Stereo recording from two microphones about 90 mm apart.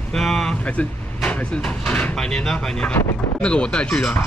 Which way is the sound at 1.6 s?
15° left (ahead or behind).